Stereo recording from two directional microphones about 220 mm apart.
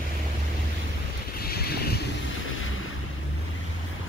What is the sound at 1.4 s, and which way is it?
Boat, 45° left (ahead or behind).